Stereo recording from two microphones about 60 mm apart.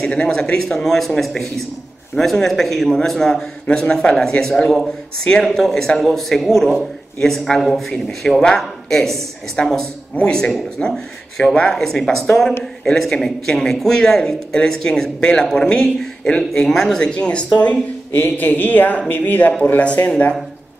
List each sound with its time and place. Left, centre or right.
0.0 s a man's voice: centre